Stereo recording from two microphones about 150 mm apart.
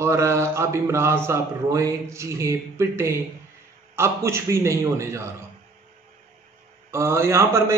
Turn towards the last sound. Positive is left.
turn(degrees=-20)  # may be behind; listen again after turning